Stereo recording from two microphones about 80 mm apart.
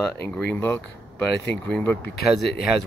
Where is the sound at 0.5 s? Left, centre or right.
Left.